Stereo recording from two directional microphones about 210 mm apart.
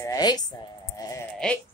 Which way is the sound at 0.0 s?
20° left (ahead or behind).